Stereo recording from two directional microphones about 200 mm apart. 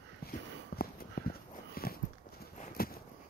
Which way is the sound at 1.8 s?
50° left (ahead or behind).